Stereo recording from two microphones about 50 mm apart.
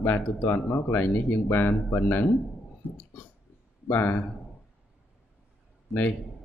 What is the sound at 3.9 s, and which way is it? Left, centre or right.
Speech, left.